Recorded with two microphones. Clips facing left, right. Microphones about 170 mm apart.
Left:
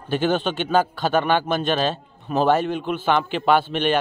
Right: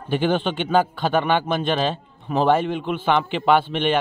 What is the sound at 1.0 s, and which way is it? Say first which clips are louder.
A man's voice: even; 20° right (ahead or behind).